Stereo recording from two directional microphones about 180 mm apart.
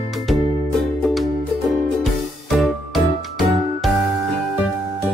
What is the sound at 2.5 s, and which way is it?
Music, centre (ahead or behind).